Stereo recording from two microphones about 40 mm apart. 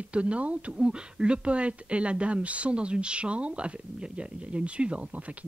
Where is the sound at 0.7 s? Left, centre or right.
Right.